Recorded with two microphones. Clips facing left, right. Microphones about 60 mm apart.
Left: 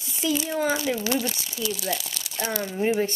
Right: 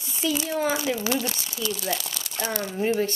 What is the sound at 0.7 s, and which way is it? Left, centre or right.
Speech, centre.